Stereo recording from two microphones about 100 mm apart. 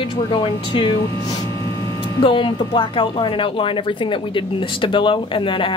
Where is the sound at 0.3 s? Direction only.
55° left (ahead or behind).